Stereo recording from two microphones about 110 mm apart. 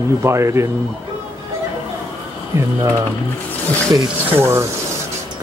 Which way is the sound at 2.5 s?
25° right (ahead or behind).